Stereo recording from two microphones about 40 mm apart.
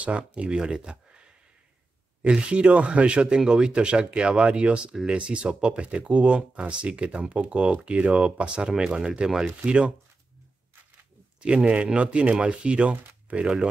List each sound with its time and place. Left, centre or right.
0.0 s speech: right
0.5 s speech: right
2.4 s speech: right
11.4 s speech: right